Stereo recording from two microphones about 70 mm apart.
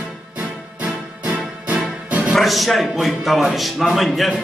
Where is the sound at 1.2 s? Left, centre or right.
Centre.